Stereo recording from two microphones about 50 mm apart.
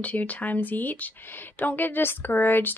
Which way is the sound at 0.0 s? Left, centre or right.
Left.